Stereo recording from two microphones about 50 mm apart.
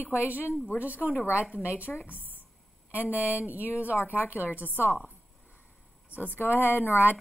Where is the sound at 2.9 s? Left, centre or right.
Right.